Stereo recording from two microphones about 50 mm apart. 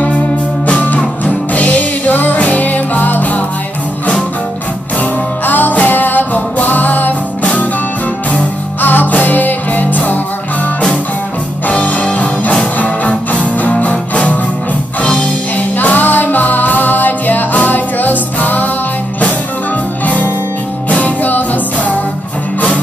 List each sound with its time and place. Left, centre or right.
0.7 s music: left
5.4 s music: left
8.3 s music: left
11.6 s music: left
15.0 s music: centre
15.5 s music: left
21.0 s music: left